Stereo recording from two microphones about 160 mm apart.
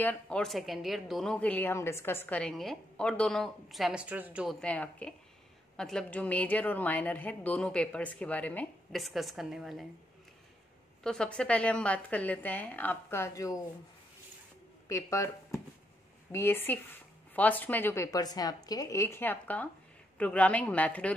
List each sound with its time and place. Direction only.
0.0 s speech: 5° left (ahead or behind); by 4.6 s 10° right (ahead or behind)
4.6 s a woman's voice: 10° left (ahead or behind)
11.1 s a woman's voice: 5° left (ahead or behind); by 13.6 s 20° left (ahead or behind)
14.9 s a woman's voice: 20° left (ahead or behind)